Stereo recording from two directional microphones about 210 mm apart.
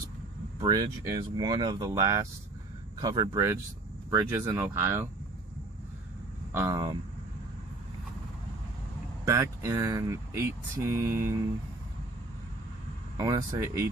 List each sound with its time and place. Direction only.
0.6 s speech: 20° right (ahead or behind)
6.5 s speech: 15° right (ahead or behind)
9.2 s speech: 15° right (ahead or behind)
13.2 s speech: 20° right (ahead or behind)